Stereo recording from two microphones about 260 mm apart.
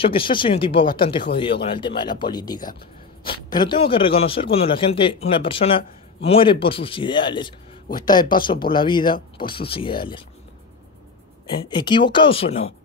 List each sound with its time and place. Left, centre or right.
0.0 s a man's voice: centre
11.7 s a man's voice: centre